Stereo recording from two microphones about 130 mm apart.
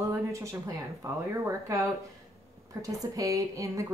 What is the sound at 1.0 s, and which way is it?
Speech, 25° right (ahead or behind).